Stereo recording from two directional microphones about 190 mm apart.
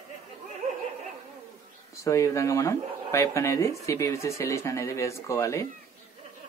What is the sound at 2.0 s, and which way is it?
Speech, 15° left (ahead or behind).